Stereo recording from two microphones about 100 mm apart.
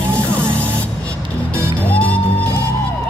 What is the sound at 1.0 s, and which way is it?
Music, 10° left (ahead or behind).